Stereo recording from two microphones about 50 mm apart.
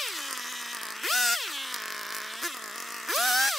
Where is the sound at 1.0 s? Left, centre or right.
Centre.